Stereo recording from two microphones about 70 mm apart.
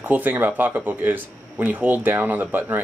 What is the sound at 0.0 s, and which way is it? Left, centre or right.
Speech, right.